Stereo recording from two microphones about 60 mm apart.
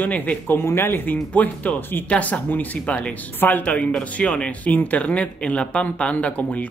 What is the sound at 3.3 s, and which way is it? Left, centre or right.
Speech, left.